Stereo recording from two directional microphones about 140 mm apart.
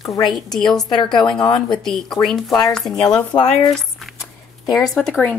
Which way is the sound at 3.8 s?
Centre (ahead or behind).